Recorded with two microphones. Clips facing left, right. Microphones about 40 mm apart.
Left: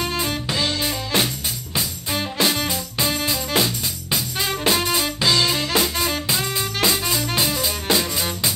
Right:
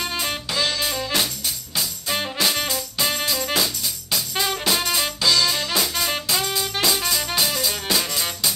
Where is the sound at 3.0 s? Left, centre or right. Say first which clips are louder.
Left 1 dB; left.